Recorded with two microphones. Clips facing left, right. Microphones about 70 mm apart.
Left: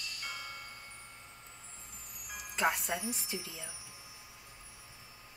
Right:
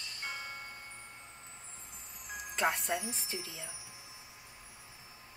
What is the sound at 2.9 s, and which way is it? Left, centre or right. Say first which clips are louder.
Speech: even; right.